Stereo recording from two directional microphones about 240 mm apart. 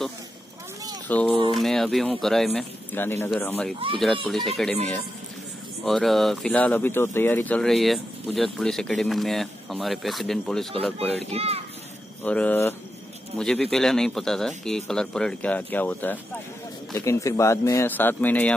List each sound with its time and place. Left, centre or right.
1.0 s speech: centre
5.9 s speech: centre
11.2 s speech: right
12.2 s speech: centre